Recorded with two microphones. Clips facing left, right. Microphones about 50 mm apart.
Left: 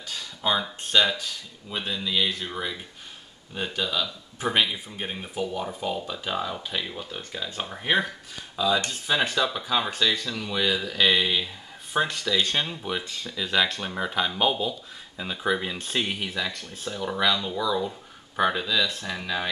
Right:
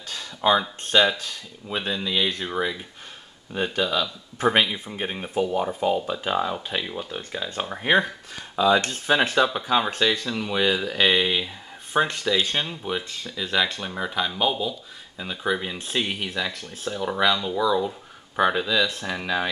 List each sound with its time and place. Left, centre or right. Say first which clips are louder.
0.1 s speech: right 5 dB; right
4.5 s speech: right 4 dB; right
4.9 s speech: right 5 dB; centre
8.5 s speech: right 5 dB; right
9.3 s speech: right 4 dB; centre